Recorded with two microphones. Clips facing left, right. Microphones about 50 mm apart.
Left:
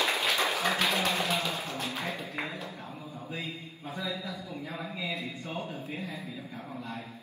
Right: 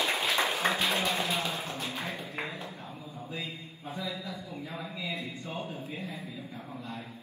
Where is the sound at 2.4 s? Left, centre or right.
Right.